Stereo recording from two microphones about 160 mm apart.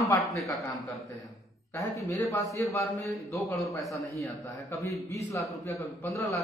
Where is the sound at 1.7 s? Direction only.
20° left (ahead or behind).